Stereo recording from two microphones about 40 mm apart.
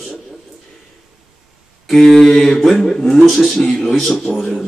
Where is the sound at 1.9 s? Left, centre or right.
Centre.